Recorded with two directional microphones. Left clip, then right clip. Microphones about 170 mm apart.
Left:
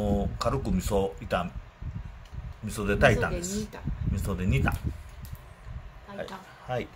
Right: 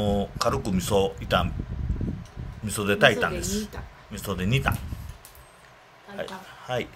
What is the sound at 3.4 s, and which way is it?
Speech, 30° right (ahead or behind).